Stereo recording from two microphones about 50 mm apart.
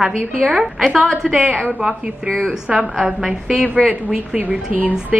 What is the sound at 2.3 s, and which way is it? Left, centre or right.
Speech, right.